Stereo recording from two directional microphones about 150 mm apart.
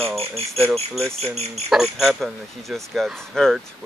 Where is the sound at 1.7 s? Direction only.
Centre (ahead or behind).